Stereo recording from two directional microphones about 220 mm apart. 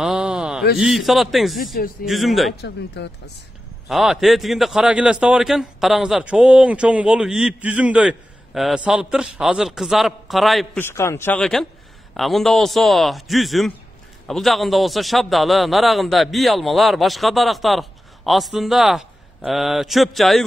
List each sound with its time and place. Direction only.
0.0 s a sound: 5° right (ahead or behind)
0.7 s a man's voice: centre (ahead or behind)
2.6 s speech: 50° left (ahead or behind)
3.9 s a man's voice: centre (ahead or behind)
10.8 s a man's voice: 10° left (ahead or behind)